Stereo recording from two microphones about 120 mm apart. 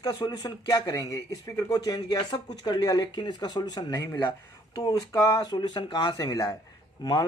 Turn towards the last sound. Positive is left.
turn(degrees=35)  # may be behind; listen again after turning